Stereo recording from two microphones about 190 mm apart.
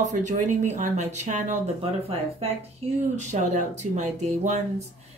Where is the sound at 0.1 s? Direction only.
40° right (ahead or behind).